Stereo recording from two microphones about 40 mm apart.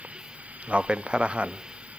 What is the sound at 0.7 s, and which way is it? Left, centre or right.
Speech, right.